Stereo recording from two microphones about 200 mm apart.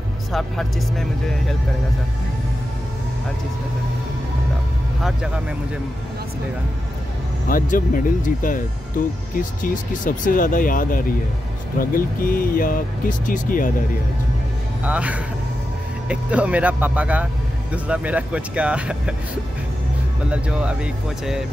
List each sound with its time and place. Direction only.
0.3 s speech: centre (ahead or behind)
7.4 s speech: 45° left (ahead or behind)
14.9 s speech: 5° right (ahead or behind)
20.2 s speech: 5° right (ahead or behind)